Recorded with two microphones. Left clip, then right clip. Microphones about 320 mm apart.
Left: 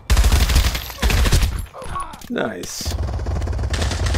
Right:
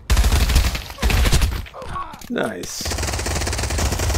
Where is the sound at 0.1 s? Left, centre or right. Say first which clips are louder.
Left 1 dB; centre.